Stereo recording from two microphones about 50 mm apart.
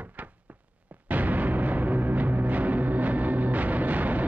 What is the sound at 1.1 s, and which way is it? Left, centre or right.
Music, right.